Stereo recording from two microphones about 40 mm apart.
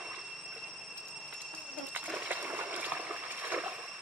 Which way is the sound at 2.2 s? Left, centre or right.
Right.